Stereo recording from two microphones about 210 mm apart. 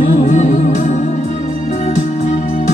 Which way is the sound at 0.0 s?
40° left (ahead or behind).